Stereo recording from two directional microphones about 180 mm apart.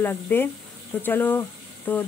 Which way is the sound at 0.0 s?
10° left (ahead or behind).